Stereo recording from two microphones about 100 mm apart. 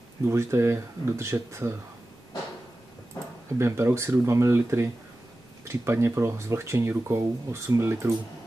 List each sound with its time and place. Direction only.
0.2 s speech: 30° right (ahead or behind)
3.5 s speech: 25° right (ahead or behind)